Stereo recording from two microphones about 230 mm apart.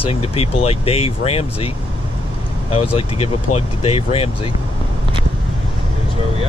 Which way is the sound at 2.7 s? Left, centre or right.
Left.